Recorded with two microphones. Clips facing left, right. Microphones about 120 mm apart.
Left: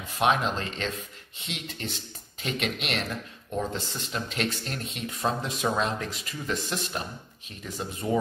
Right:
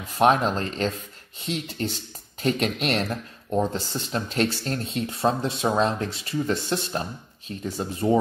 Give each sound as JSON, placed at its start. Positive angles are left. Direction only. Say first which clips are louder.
{"t": 0.1, "sound": "speech", "louder": "right 5 dB", "side_deg": -40}